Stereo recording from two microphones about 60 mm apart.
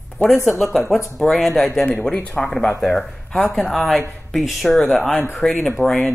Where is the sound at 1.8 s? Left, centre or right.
Centre.